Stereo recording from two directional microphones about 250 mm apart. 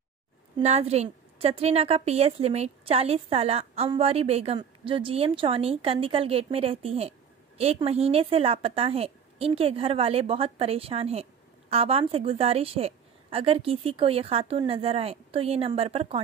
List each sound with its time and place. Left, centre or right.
0.6 s a woman's voice: right